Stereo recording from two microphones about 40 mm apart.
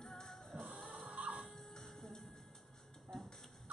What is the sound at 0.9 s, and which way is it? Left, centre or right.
Music, right.